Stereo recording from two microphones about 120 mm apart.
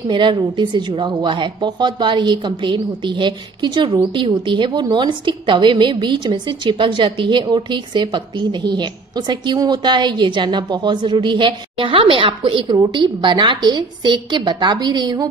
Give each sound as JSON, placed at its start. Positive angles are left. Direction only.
{"t": 0.1, "sound": "a woman's voice", "side_deg": -40}